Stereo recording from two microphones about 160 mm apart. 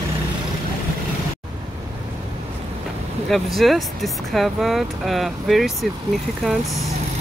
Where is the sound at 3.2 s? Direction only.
Centre (ahead or behind).